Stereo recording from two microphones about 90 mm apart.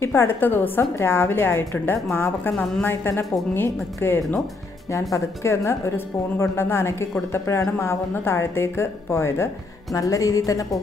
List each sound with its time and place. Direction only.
0.0 s a woman's voice: 25° left (ahead or behind)